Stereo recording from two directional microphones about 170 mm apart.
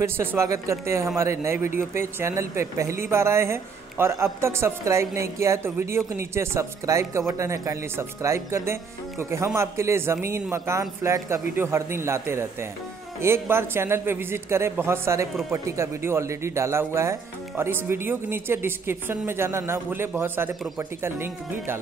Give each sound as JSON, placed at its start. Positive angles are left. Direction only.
{"t": 0.0, "sound": "speech", "side_deg": -15}